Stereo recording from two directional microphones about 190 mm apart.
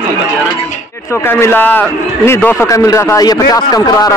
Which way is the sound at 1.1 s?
10° left (ahead or behind).